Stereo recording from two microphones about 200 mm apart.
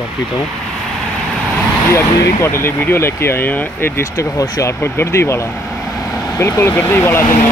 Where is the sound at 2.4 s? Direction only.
10° left (ahead or behind).